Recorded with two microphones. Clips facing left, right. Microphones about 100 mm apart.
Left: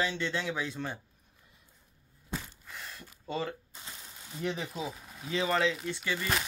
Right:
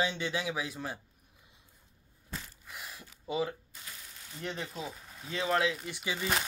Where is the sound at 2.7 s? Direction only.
10° right (ahead or behind).